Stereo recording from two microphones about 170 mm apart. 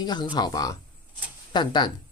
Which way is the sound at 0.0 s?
25° left (ahead or behind).